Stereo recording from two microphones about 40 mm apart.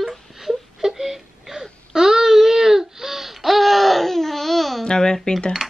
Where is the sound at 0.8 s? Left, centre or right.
Centre.